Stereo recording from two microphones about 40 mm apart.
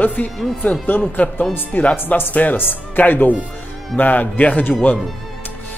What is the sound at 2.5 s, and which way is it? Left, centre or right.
A man's voice, left.